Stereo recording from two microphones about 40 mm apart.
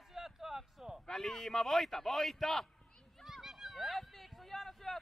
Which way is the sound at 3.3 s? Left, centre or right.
Centre.